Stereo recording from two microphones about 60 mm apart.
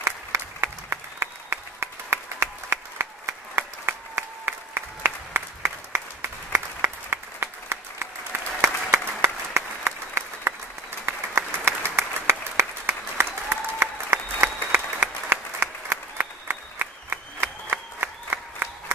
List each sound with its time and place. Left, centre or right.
0.0 s applause: right